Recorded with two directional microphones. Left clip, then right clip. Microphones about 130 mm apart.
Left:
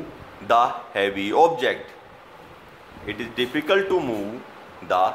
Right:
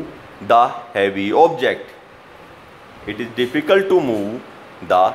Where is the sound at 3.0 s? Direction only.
10° right (ahead or behind).